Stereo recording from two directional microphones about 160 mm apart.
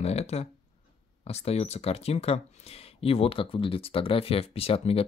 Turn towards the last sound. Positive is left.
turn(degrees=40)  # may be behind; listen again after turning